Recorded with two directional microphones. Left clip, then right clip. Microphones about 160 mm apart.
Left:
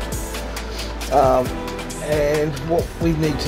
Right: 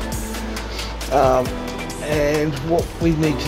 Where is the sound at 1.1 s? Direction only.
5° right (ahead or behind).